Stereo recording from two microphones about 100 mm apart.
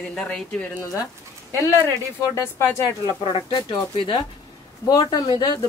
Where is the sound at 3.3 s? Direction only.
60° left (ahead or behind); by 5.3 s 45° left (ahead or behind).